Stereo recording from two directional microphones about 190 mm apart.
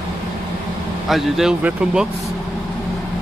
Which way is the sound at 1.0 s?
Centre (ahead or behind).